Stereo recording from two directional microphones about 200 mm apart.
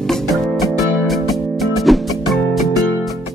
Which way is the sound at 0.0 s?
Centre (ahead or behind).